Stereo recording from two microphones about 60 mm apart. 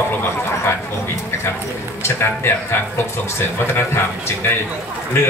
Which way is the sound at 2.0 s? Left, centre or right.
Left.